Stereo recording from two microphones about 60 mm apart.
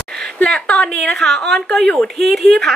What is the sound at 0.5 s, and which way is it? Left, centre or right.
Speech, centre.